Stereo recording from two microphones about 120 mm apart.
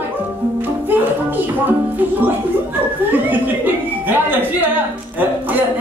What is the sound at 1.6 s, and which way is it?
Music, 15° right (ahead or behind).